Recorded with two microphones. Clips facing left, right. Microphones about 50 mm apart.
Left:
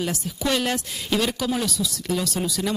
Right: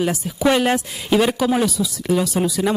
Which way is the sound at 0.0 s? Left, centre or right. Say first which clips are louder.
Right 7 dB; centre.